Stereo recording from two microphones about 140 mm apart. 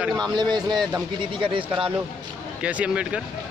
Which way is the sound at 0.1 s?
30° right (ahead or behind).